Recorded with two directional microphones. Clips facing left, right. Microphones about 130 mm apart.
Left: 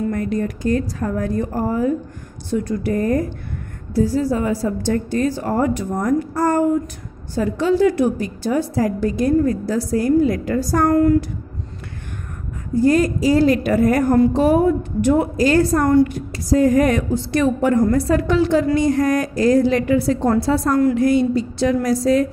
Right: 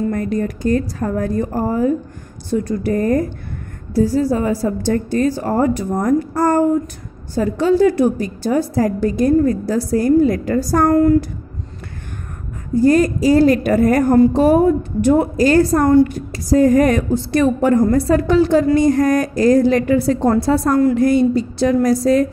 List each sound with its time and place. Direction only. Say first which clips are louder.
0.1 s a woman's voice: right 2 dB; 40° right (ahead or behind)
12.8 s a woman's voice: right 3 dB; 40° right (ahead or behind)
20.9 s a woman's voice: right 2 dB; 45° right (ahead or behind)